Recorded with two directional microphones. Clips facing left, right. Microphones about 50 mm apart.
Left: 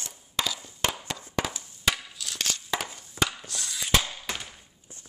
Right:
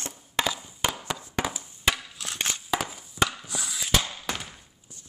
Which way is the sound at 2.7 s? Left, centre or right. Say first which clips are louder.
Right 5 dB; centre.